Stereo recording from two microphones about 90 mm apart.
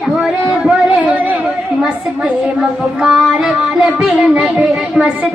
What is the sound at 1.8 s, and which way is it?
Child singing, 5° right (ahead or behind).